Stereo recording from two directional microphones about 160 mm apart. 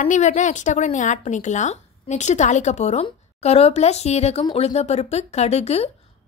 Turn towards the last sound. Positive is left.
turn(degrees=40)  # may be behind; listen again after turning